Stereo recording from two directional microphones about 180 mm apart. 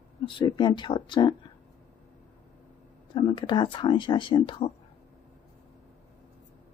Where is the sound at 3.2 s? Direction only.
25° left (ahead or behind).